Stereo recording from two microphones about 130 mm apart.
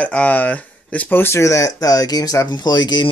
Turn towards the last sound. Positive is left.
turn(degrees=35)  # may be behind; listen again after turning